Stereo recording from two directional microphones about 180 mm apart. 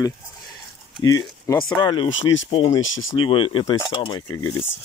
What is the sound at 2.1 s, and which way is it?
Speech, 90° left.